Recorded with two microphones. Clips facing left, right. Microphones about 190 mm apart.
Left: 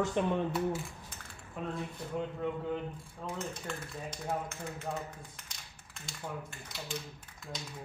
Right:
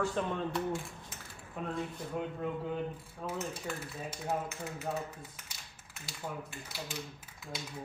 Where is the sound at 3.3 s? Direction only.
5° right (ahead or behind).